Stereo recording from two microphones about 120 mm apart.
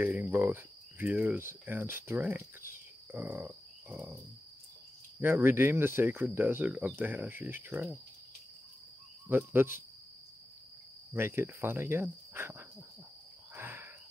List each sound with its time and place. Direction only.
0.2 s cricket: 15° right (ahead or behind)
1.1 s speech: 15° right (ahead or behind)
5.2 s speech: 20° right (ahead or behind)
9.3 s speech: 20° right (ahead or behind)
11.1 s speech: 20° right (ahead or behind)
13.6 s cricket: 20° right (ahead or behind)